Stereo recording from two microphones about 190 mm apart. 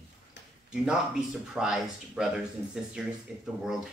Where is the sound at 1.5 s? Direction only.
5° right (ahead or behind).